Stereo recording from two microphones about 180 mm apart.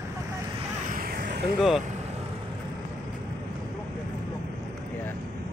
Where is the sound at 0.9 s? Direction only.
55° right (ahead or behind).